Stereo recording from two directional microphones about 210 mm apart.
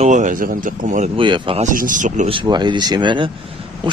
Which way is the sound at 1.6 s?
40° right (ahead or behind).